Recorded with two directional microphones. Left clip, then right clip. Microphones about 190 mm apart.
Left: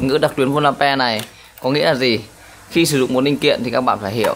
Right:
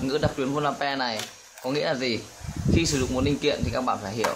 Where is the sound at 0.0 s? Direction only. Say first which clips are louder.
Left 10 dB; 50° left (ahead or behind).